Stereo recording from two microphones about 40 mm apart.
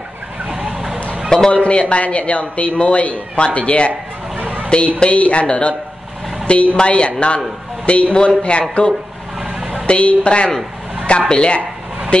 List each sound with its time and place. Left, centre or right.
1.5 s speech: left
4.4 s a sound: right
4.6 s a woman's voice: left
9.4 s vehicle: centre
9.8 s a woman's voice: left